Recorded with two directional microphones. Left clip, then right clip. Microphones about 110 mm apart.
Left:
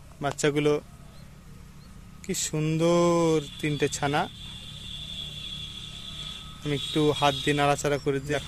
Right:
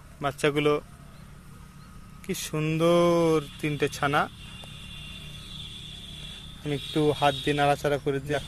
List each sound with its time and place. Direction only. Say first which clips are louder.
0.2 s speech: even; 40° left (ahead or behind)
2.2 s speech: even; 30° left (ahead or behind)
6.6 s speech: left 1 dB; 30° left (ahead or behind)